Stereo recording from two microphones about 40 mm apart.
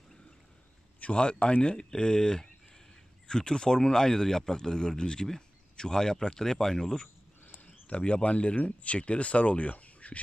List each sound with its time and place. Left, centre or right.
1.0 s speech: left
7.9 s speech: left